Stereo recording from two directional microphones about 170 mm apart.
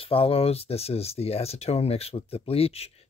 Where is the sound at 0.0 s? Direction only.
35° left (ahead or behind).